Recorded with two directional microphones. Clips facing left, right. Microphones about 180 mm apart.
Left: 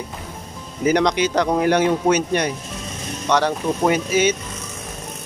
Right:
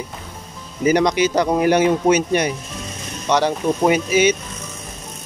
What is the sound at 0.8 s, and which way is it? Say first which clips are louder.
Speech: right 2 dB; 5° right (ahead or behind).